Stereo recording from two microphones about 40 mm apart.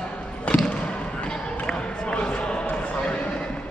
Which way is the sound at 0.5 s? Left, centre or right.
Left.